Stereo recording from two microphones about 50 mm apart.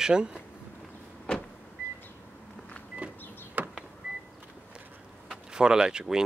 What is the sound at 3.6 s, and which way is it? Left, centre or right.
Power windows, right.